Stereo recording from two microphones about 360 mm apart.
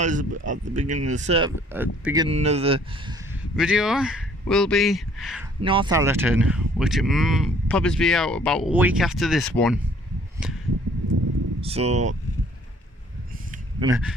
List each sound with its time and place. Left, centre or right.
0.0 s speech: right
3.5 s speech: centre
5.6 s speech: centre
10.4 s a sound: centre
11.6 s speech: centre
13.5 s a sound: centre